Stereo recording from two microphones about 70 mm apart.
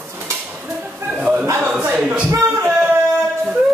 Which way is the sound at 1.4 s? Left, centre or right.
Right.